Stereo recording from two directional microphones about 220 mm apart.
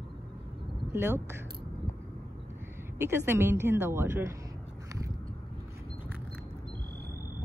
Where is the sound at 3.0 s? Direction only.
10° right (ahead or behind).